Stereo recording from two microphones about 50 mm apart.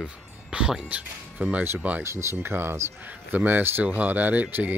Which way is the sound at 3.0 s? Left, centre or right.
Right.